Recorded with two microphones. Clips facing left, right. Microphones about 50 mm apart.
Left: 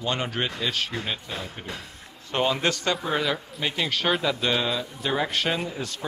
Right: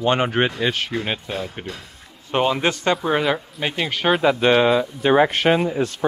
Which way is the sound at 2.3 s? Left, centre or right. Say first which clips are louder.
Right 5 dB; right.